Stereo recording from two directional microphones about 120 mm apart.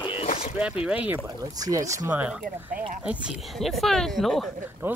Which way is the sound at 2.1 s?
10° right (ahead or behind).